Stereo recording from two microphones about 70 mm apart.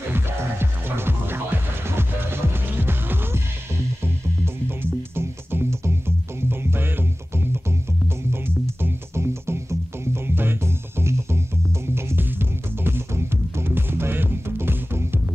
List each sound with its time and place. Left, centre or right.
0.1 s music: right
4.6 s music: right
8.8 s music: right